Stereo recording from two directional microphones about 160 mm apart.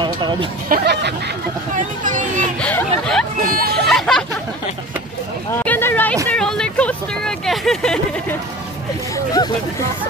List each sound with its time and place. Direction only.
0.0 s chatter: 30° right (ahead or behind)
0.7 s speech: 90° right
1.8 s speech: 55° right (ahead or behind)
2.6 s speech: 5° left (ahead or behind)
3.4 s speech: 65° right (ahead or behind)
3.9 s speech: centre (ahead or behind)
5.5 s a sound: 10° left (ahead or behind)
6.2 s vehicle: 5° left (ahead or behind)
9.1 s speech: 25° left (ahead or behind)